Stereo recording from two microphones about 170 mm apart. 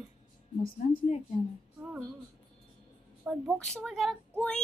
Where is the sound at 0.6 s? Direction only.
55° left (ahead or behind).